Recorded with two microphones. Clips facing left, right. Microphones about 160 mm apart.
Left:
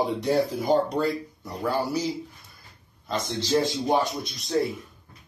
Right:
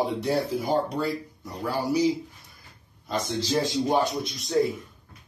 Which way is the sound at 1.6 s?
15° right (ahead or behind).